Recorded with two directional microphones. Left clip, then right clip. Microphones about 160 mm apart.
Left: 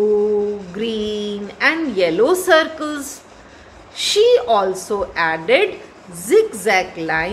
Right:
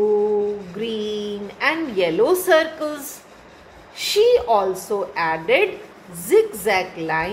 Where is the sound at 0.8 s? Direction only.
25° left (ahead or behind).